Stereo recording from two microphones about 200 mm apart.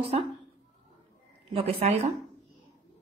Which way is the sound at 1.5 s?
30° right (ahead or behind).